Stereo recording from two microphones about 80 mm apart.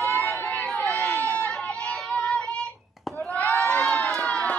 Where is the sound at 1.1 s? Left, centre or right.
Right.